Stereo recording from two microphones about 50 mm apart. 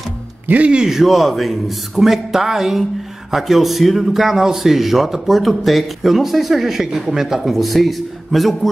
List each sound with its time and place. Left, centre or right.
0.5 s a man's voice: right
0.7 s a man's voice: centre